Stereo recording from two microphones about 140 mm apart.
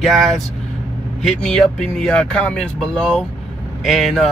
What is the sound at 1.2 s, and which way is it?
Speech, 5° left (ahead or behind).